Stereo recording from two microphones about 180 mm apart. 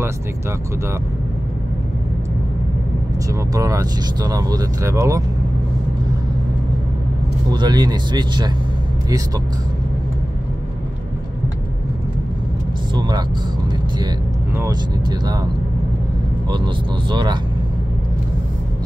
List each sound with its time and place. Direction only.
3.3 s speech: 20° right (ahead or behind)
7.4 s speech: 25° right (ahead or behind)
14.6 s speech: 20° right (ahead or behind)